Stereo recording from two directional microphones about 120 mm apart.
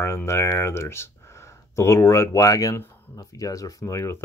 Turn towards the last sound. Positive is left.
turn(degrees=25)  # may be behind; listen again after turning